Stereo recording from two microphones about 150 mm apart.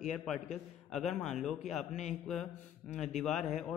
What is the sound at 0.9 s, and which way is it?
Speech, centre (ahead or behind).